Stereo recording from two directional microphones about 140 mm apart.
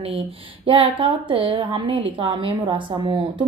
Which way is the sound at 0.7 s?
40° right (ahead or behind).